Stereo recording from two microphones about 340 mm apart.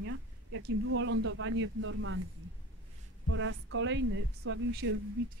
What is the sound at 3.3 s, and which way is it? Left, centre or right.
Speech, right.